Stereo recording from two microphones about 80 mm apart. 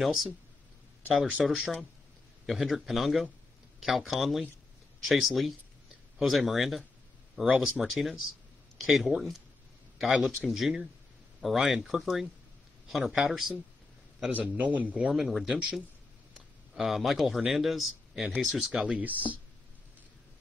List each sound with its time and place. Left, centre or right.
0.0 s speech: centre
1.4 s speech: centre
14.3 s speech: right
15.1 s speech: centre
18.9 s speech: right